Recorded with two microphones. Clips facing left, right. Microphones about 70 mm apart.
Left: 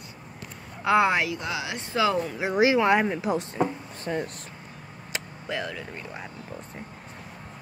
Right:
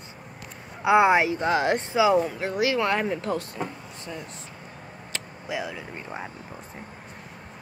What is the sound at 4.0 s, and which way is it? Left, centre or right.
Speech, left.